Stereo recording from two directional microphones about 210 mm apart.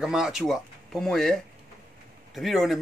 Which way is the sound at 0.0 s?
Centre (ahead or behind).